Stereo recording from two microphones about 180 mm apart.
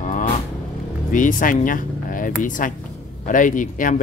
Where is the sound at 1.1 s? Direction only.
45° left (ahead or behind).